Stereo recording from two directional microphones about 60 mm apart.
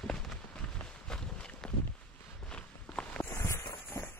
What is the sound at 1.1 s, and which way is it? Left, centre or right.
Walk, centre.